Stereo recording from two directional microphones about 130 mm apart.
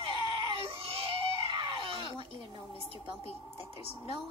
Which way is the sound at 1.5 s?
40° right (ahead or behind).